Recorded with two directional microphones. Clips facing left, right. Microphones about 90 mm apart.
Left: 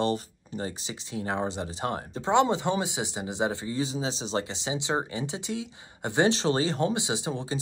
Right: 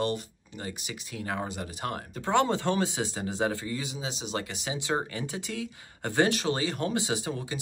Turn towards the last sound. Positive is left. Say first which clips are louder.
# left 1 dB
turn(degrees=25)  # may be behind; listen again after turning